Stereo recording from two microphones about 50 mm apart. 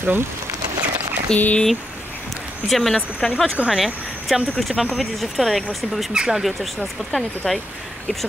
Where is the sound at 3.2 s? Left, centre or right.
Centre.